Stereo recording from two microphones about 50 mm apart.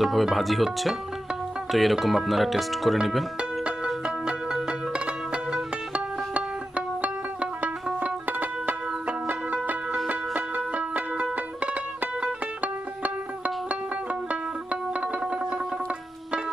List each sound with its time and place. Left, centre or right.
0.0 s speech: centre
3.8 s music: centre
7.6 s music: right